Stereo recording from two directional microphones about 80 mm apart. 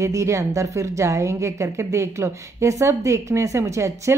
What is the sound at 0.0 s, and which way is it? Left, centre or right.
A woman's voice, right.